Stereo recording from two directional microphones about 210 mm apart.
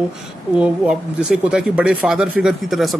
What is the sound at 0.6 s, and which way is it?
Speech, 5° right (ahead or behind).